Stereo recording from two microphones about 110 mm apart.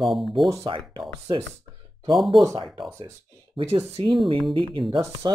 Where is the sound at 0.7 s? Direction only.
50° right (ahead or behind).